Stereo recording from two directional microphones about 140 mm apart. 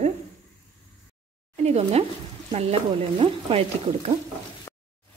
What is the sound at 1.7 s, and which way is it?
Speech, 50° right (ahead or behind).